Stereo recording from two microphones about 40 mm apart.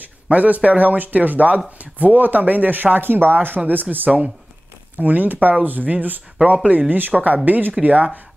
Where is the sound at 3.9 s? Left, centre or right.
Right.